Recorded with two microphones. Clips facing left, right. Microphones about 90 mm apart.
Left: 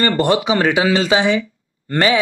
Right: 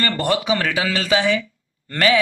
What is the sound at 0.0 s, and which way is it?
A man's voice, 20° left (ahead or behind).